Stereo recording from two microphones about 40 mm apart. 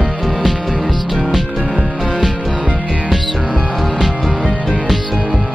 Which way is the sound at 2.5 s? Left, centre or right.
Right.